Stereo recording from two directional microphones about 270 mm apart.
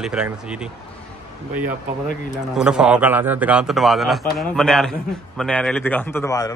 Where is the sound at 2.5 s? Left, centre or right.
Centre.